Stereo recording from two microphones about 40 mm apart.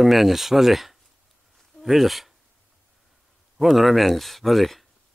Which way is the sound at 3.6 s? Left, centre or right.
Centre.